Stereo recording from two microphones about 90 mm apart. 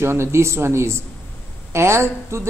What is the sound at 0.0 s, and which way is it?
Speech, 30° right (ahead or behind).